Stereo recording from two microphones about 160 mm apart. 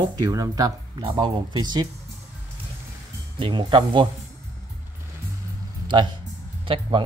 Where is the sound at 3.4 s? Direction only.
30° right (ahead or behind).